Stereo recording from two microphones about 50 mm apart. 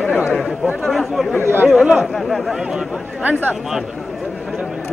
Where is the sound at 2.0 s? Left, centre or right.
Centre.